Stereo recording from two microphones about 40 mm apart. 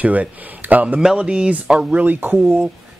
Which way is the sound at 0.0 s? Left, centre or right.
Right.